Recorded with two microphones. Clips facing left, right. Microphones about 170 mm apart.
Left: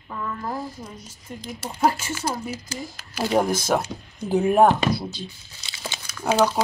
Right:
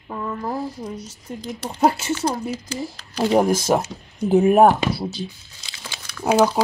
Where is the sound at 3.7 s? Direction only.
10° right (ahead or behind).